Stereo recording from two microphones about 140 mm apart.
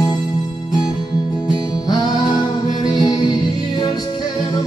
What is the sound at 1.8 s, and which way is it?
Music, 30° left (ahead or behind).